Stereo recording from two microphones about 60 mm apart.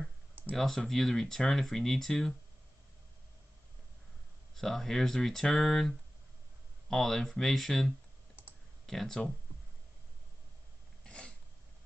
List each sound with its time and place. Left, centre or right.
0.6 s speech: centre
4.6 s speech: centre
11.1 s a sound: centre